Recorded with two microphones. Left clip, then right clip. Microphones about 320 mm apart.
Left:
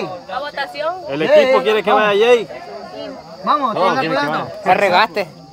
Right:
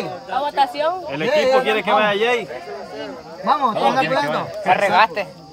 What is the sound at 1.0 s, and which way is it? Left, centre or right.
Speech, left.